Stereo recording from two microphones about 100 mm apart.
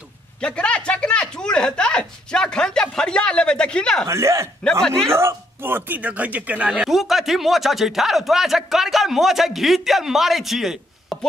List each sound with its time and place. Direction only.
0.4 s speech: 10° left (ahead or behind)
4.1 s speech: 30° right (ahead or behind)
4.8 s speech: 5° left (ahead or behind)
5.1 s speech: 25° right (ahead or behind)
6.7 s speech: centre (ahead or behind)